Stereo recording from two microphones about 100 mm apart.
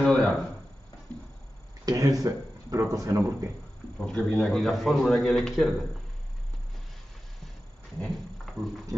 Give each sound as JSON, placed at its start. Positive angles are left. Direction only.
{"t": 0.0, "sound": "a sound", "side_deg": 5}
{"t": 1.9, "sound": "speech", "side_deg": -35}
{"t": 4.2, "sound": "a man's voice", "side_deg": 0}
{"t": 8.0, "sound": "speech", "side_deg": 5}